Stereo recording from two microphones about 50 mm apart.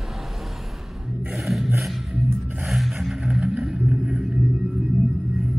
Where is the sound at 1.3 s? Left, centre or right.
Centre.